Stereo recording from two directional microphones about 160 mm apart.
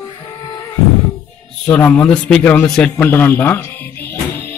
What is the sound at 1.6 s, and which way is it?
A man's voice, 10° left (ahead or behind).